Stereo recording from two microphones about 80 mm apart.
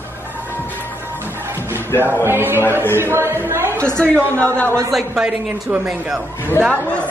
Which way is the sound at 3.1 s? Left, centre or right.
Right.